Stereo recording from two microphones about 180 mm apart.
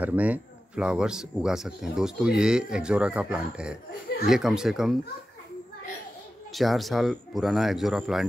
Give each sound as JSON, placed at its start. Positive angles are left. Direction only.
{"t": 0.0, "sound": "speech", "side_deg": -10}
{"t": 6.5, "sound": "speech", "side_deg": 0}